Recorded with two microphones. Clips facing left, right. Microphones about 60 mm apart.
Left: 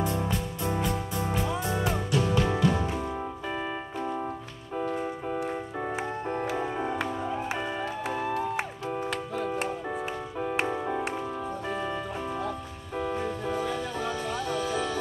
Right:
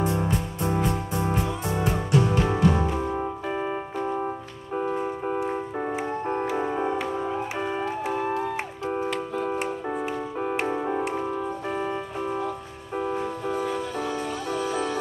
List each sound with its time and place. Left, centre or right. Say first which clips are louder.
0.0 s music: right 3 dB; right
1.2 s music: right 1 dB; right
3.0 s music: right 5 dB; right
3.4 s music: right 4 dB; right
4.7 s organ: right 3 dB; right
6.5 s music: right 4 dB; centre
10.7 s music: right 3 dB; centre
11.7 s organ: right 3 dB; right
13.5 s music: right 4 dB; right